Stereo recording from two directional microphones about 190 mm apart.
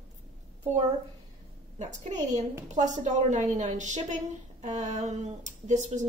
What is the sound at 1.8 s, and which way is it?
Speech, 40° right (ahead or behind).